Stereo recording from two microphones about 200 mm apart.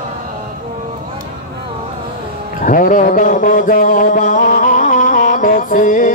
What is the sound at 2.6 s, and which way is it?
Music, 40° left (ahead or behind).